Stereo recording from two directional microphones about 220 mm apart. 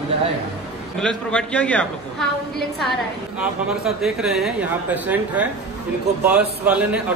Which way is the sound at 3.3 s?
Centre (ahead or behind).